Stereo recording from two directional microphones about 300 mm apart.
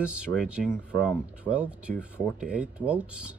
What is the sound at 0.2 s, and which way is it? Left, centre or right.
Speech, centre.